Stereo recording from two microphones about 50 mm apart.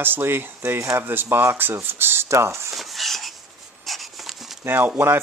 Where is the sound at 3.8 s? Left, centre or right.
Centre.